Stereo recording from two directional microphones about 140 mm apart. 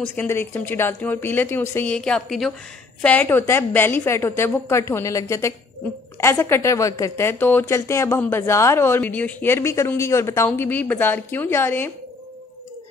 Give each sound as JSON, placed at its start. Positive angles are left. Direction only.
{"t": 0.0, "sound": "a woman's voice", "side_deg": 10}